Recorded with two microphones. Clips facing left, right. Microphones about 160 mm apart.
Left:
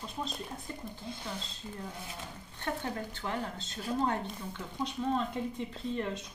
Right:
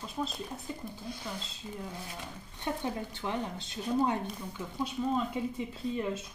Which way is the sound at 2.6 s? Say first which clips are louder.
Right 2 dB; 15° right (ahead or behind).